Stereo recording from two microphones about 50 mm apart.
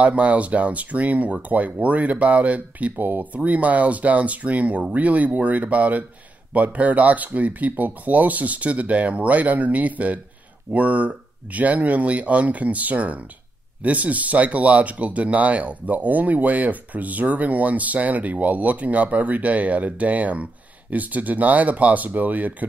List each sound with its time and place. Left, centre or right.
0.0 s speech: right